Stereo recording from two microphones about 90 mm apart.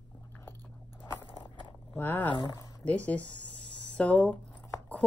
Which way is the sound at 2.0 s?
20° left (ahead or behind).